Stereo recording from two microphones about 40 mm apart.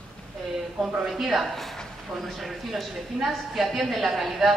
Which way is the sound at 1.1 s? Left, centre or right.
Centre.